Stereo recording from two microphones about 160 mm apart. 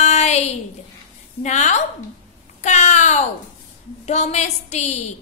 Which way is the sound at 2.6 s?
50° left (ahead or behind).